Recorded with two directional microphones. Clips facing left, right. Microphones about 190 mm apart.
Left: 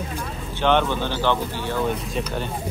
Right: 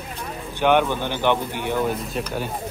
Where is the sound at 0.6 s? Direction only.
10° right (ahead or behind).